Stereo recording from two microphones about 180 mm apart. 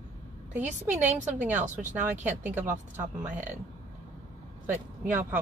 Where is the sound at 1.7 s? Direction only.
45° right (ahead or behind).